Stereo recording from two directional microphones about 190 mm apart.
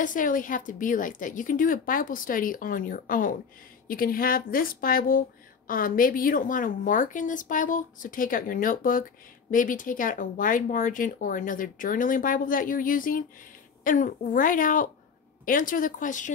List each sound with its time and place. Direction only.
0.0 s speech: 45° left (ahead or behind)